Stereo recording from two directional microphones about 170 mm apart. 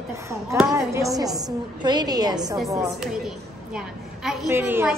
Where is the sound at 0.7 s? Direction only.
20° right (ahead or behind).